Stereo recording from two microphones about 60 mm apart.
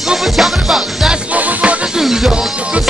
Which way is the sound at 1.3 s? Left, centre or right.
Right.